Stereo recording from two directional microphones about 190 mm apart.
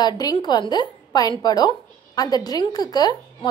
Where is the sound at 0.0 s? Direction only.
20° left (ahead or behind).